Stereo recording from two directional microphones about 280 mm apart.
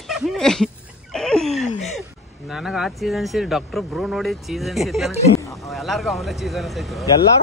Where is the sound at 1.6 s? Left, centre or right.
Left.